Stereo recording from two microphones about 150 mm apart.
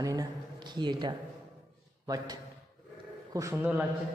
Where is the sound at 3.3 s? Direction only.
20° right (ahead or behind).